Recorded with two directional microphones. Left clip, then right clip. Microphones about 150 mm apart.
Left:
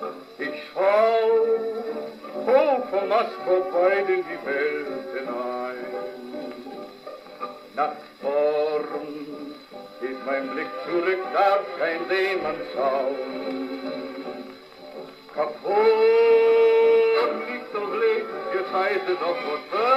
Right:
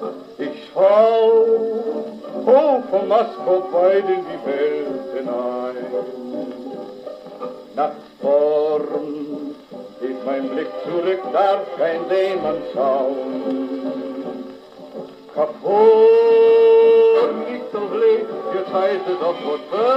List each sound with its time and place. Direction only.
0.0 s music: 35° right (ahead or behind)
2.4 s speech: 35° right (ahead or behind)
7.7 s male singing: 35° right (ahead or behind)
10.0 s speech: 30° right (ahead or behind)
15.3 s a sound: 35° right (ahead or behind)
17.4 s music: 30° right (ahead or behind)